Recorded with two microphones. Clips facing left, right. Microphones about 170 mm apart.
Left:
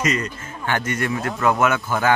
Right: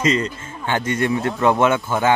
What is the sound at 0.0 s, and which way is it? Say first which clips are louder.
Speech: right 4 dB; 25° right (ahead or behind).